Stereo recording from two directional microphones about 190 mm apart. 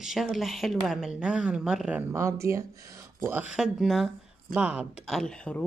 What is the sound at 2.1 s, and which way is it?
Speech, 15° right (ahead or behind).